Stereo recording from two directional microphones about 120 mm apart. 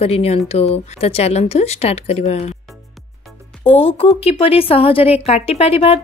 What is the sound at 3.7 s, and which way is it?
Speech, 50° left (ahead or behind).